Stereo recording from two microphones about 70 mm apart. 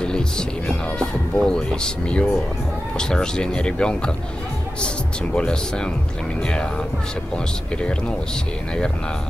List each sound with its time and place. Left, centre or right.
0.0 s music: centre
3.0 s speech: centre